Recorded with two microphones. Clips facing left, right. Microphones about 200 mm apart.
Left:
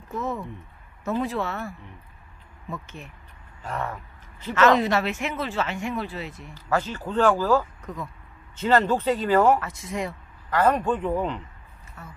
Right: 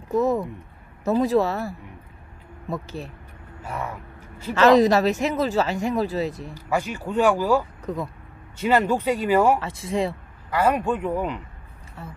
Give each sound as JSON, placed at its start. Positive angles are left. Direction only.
{"t": 0.1, "sound": "speech", "side_deg": -40}
{"t": 3.6, "sound": "speech", "side_deg": -10}
{"t": 4.6, "sound": "speech", "side_deg": -35}
{"t": 6.5, "sound": "speech", "side_deg": -10}
{"t": 7.8, "sound": "speech", "side_deg": -35}
{"t": 8.5, "sound": "speech", "side_deg": -10}
{"t": 9.6, "sound": "speech", "side_deg": -30}
{"t": 10.5, "sound": "speech", "side_deg": -10}
{"t": 12.0, "sound": "speech", "side_deg": -30}